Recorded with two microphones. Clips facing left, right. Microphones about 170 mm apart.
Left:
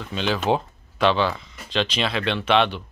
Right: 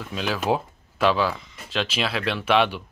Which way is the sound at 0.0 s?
5° right (ahead or behind).